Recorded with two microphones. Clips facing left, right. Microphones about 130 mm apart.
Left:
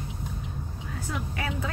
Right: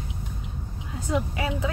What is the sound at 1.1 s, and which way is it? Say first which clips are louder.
Speech: right 7 dB; 25° right (ahead or behind).